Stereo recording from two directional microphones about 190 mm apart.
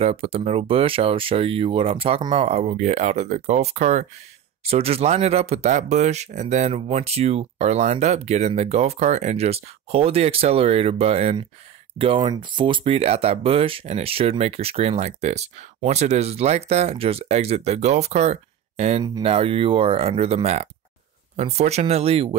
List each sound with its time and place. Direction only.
0.0 s speech: 30° right (ahead or behind)